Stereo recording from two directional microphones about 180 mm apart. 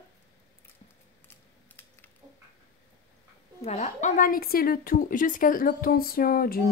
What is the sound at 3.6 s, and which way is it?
Speech, 40° left (ahead or behind).